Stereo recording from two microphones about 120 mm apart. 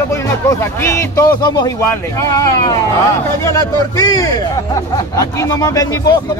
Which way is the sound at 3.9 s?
30° left (ahead or behind).